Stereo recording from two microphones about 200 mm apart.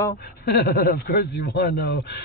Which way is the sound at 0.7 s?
50° left (ahead or behind).